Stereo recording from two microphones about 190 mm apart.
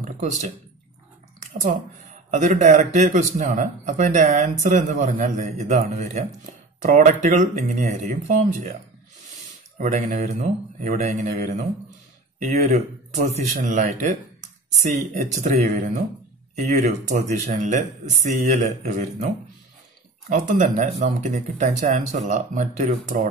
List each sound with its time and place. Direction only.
0.0 s a sound: 40° right (ahead or behind)
1.4 s speech: 40° right (ahead or behind)
9.8 s speech: 45° right (ahead or behind)